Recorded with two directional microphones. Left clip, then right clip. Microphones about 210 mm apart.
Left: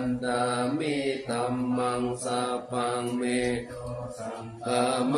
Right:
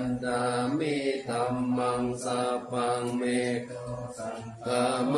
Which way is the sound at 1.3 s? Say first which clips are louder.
Even; 15° left (ahead or behind).